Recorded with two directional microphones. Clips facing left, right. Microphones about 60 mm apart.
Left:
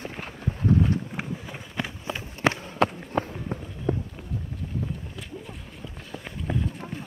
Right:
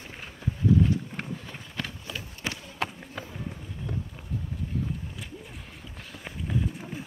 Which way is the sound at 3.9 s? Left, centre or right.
Left.